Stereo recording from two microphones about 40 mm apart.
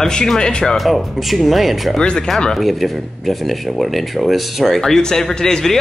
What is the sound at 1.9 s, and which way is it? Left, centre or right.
Speech, left.